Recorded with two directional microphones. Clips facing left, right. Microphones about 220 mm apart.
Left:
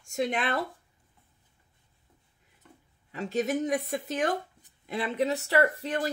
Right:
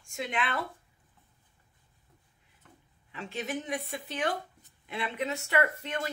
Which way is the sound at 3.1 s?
40° left (ahead or behind).